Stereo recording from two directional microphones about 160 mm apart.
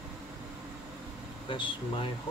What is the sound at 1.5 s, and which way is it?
Speech, 35° left (ahead or behind).